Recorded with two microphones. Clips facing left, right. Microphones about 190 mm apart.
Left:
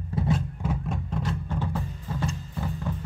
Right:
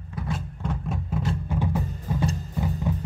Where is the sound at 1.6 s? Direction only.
15° right (ahead or behind).